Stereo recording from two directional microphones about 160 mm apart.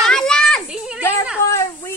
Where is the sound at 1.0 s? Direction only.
15° left (ahead or behind).